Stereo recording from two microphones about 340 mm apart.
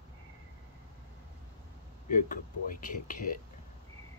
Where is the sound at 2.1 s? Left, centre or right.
Left.